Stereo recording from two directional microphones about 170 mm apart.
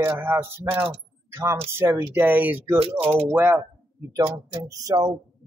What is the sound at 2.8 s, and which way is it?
Speech, 35° right (ahead or behind).